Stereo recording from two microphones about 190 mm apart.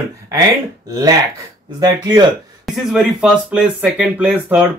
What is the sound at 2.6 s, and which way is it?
Speech, centre (ahead or behind).